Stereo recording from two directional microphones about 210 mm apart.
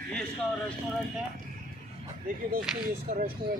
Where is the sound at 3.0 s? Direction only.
45° right (ahead or behind).